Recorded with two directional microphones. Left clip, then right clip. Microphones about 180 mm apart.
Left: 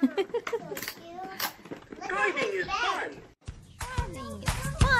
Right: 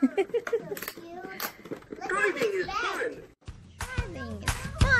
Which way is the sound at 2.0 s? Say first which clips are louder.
Right 1 dB; 15° right (ahead or behind).